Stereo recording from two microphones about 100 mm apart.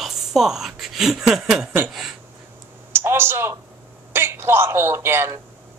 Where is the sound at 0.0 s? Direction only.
5° right (ahead or behind).